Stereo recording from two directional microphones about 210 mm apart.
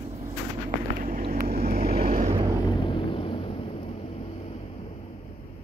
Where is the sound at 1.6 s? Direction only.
45° right (ahead or behind).